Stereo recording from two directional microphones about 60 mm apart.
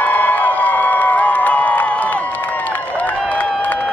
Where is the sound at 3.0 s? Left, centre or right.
Left.